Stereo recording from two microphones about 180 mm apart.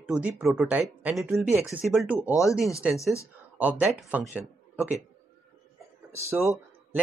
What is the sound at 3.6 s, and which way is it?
Speech, 5° right (ahead or behind).